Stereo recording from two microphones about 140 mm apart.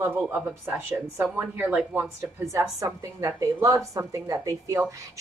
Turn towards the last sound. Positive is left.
turn(degrees=-20)  # may be behind; listen again after turning